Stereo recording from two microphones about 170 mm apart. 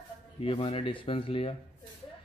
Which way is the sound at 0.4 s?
35° left (ahead or behind).